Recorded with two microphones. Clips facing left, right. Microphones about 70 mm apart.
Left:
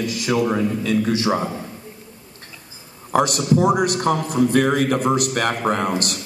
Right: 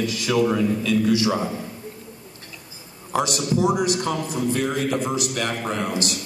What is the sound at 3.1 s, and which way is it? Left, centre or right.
A man's voice, left.